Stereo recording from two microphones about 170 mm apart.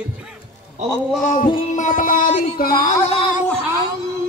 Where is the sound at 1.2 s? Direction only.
50° left (ahead or behind).